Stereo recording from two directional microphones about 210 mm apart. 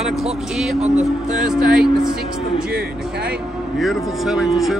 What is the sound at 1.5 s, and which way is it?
Speech, 5° right (ahead or behind).